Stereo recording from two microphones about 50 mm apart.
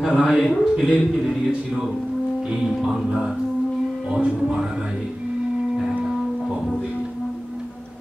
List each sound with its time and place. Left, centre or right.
0.1 s speech: centre
4.1 s speech: centre